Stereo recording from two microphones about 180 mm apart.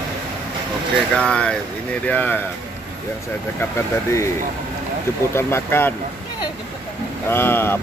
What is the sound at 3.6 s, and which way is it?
Speech, 15° left (ahead or behind).